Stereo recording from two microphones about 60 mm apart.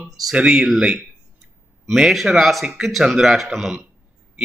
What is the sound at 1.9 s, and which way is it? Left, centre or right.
A man's voice, centre.